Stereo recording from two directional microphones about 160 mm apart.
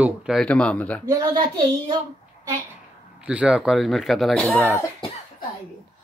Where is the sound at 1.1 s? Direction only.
30° right (ahead or behind).